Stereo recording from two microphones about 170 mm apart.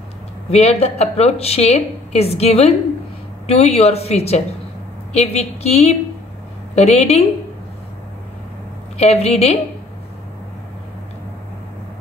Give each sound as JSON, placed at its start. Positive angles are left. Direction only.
{"t": 0.5, "sound": "speech", "side_deg": 40}
{"t": 8.9, "sound": "speech", "side_deg": 40}